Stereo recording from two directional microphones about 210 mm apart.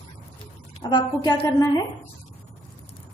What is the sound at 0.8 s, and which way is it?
A woman's voice, 20° left (ahead or behind).